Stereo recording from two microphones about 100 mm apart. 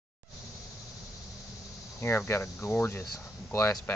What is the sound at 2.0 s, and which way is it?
Speech, 25° left (ahead or behind).